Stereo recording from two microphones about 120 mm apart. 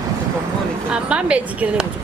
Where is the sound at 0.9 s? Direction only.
10° right (ahead or behind).